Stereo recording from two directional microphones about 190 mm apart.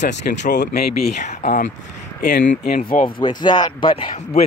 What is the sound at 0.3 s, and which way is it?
Speech, 50° left (ahead or behind).